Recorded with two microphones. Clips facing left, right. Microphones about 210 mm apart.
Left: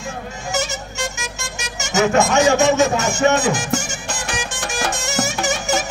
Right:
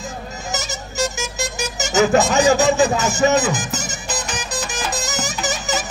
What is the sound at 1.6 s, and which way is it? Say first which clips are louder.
Speech: right 1 dB; 35° right (ahead or behind).